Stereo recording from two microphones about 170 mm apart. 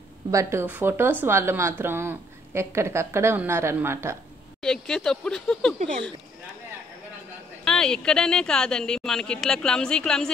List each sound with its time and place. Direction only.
0.3 s a woman's voice: 15° right (ahead or behind)
4.6 s speech: 5° left (ahead or behind)
7.6 s speech: 5° left (ahead or behind)